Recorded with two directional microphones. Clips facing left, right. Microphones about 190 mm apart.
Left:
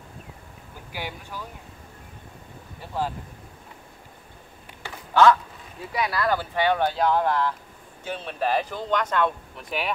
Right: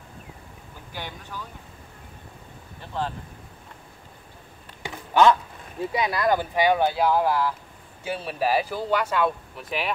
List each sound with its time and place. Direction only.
0.9 s speech: 10° left (ahead or behind)
2.8 s speech: 10° left (ahead or behind)
4.8 s a sound: 20° right (ahead or behind)
5.9 s speech: 20° right (ahead or behind); by 9.9 s centre (ahead or behind)